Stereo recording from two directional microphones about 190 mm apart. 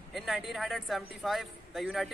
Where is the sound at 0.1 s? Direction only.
Centre (ahead or behind).